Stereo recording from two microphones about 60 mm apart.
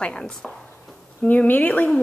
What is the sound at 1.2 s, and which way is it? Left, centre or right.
Speech, left.